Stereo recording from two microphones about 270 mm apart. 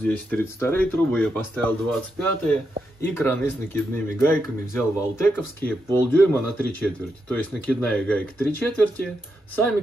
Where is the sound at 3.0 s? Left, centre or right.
Centre.